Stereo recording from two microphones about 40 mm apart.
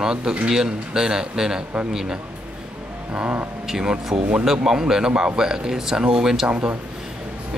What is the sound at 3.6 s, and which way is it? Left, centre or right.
Speech, centre.